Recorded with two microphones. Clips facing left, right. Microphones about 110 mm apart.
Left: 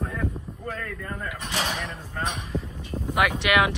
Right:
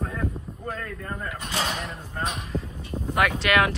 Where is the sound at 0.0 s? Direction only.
5° right (ahead or behind).